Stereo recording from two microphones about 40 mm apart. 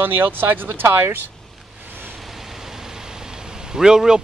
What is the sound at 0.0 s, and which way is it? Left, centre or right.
Speech, right.